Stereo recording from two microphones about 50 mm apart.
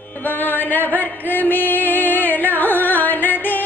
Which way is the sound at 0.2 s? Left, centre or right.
Left.